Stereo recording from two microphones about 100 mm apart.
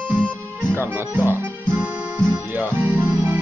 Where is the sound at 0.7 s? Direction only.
25° right (ahead or behind).